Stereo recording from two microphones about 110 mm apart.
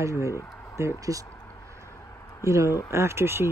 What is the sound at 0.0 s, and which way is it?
Speech, 25° right (ahead or behind).